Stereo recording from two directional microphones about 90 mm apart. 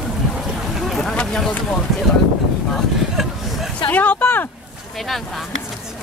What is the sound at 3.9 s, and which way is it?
Vehicle, 20° left (ahead or behind).